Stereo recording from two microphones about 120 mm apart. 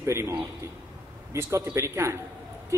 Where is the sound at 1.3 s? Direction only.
25° right (ahead or behind).